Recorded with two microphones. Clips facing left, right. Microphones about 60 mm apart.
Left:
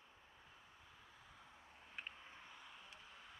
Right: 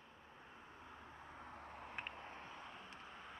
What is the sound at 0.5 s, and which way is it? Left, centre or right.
Vehicle, right.